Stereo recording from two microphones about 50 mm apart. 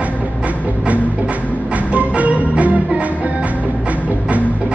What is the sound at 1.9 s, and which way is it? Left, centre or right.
Music, right.